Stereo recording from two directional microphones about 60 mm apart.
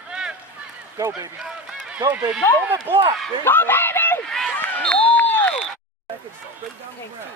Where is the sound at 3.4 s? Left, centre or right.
Left.